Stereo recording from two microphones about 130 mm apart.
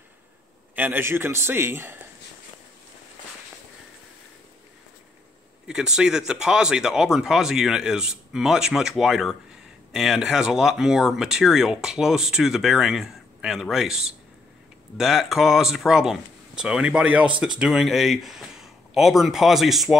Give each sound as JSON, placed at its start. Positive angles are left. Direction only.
{"t": 0.7, "sound": "a man's voice", "side_deg": -15}
{"t": 5.7, "sound": "speech", "side_deg": -5}